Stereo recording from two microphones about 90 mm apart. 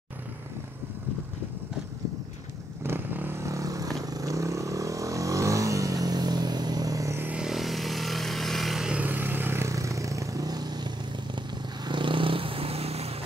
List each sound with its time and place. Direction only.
2.8 s vehicle: 25° right (ahead or behind)
3.3 s vehicle: 35° right (ahead or behind)
7.3 s vehicle: 5° right (ahead or behind)
9.0 s vehicle: 20° right (ahead or behind); by 13.1 s 90° right